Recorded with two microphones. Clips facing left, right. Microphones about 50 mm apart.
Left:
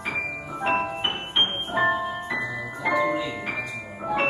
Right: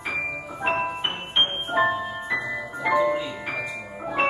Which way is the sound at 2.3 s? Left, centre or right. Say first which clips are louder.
Right 1 dB; centre.